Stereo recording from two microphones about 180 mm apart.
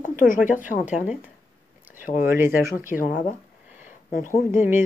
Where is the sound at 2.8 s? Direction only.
50° left (ahead or behind).